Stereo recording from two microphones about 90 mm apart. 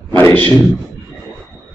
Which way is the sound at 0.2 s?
20° left (ahead or behind).